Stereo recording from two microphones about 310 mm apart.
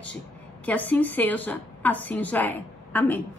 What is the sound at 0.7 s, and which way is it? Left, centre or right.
A woman's voice, centre.